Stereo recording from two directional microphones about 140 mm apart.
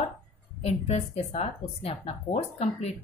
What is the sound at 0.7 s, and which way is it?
Speech, 50° left (ahead or behind).